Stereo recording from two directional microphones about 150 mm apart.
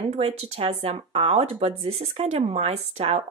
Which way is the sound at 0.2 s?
40° right (ahead or behind).